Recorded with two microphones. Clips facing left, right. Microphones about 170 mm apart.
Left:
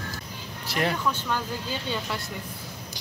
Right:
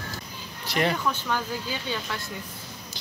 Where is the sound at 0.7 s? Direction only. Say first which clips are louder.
Right 2 dB; centre (ahead or behind).